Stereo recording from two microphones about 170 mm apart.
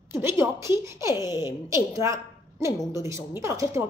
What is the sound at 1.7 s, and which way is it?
A woman's voice, 20° right (ahead or behind).